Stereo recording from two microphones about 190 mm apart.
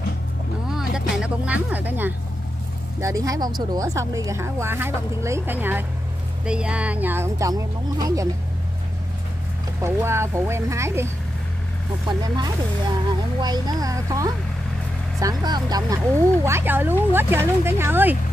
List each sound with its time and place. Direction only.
0.7 s music: 5° right (ahead or behind)
3.0 s speech: 15° right (ahead or behind)
9.8 s speech: 15° right (ahead or behind)
12.1 s speech: 20° right (ahead or behind)